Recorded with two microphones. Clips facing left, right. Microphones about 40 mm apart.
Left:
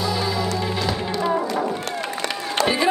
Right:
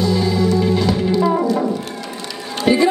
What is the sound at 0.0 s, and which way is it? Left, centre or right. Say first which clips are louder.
Music: right 6 dB; centre.